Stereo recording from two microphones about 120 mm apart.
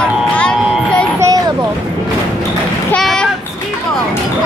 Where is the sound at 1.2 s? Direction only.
30° right (ahead or behind).